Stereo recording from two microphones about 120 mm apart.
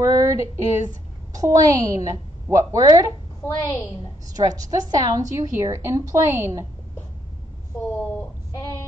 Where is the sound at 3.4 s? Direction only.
25° left (ahead or behind).